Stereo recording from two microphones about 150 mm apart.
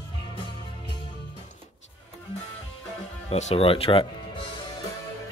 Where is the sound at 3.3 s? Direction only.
45° left (ahead or behind).